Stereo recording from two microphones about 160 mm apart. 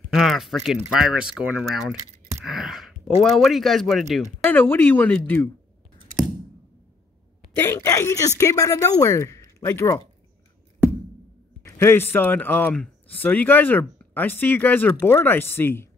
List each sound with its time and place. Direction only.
0.1 s speech: centre (ahead or behind)
2.4 s a sound: centre (ahead or behind)
3.2 s speech: centre (ahead or behind)
4.2 s speech: 10° left (ahead or behind)
7.5 s speech: 15° left (ahead or behind)
11.8 s speech: 15° left (ahead or behind)